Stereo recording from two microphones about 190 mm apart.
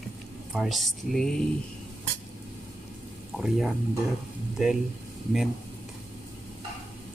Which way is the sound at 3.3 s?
Centre (ahead or behind).